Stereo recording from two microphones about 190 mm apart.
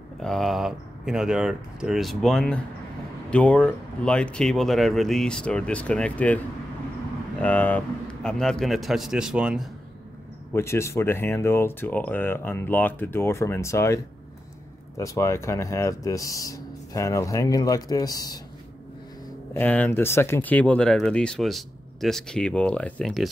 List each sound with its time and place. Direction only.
0.2 s speech: centre (ahead or behind)
7.4 s speech: 10° left (ahead or behind)
10.5 s speech: 15° left (ahead or behind)
19.5 s speech: 10° left (ahead or behind)